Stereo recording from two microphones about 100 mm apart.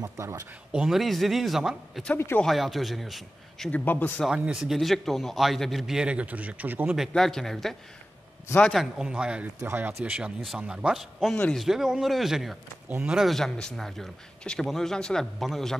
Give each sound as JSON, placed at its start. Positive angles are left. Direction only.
{"t": 0.0, "sound": "speech", "side_deg": -30}
{"t": 0.7, "sound": "a man's voice", "side_deg": 0}
{"t": 3.7, "sound": "speech", "side_deg": 20}
{"t": 4.3, "sound": "a man's voice", "side_deg": -5}
{"t": 7.0, "sound": "a man's voice", "side_deg": 5}
{"t": 8.7, "sound": "speech", "side_deg": -5}
{"t": 9.6, "sound": "a man's voice", "side_deg": -25}